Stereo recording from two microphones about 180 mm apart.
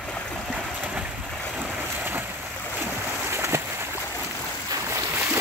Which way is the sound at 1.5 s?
5° right (ahead or behind).